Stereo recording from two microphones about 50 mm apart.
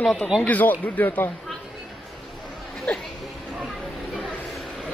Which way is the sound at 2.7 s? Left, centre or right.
Centre.